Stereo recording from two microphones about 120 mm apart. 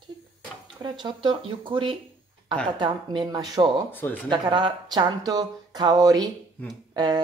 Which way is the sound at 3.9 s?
15° left (ahead or behind).